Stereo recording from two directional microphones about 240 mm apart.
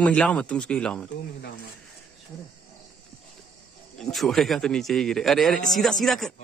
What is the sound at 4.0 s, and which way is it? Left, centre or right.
Speech, centre.